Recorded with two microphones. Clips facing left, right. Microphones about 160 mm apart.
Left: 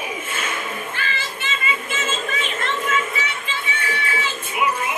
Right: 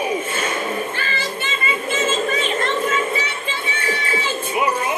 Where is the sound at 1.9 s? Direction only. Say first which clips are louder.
Right 6 dB; 35° right (ahead or behind).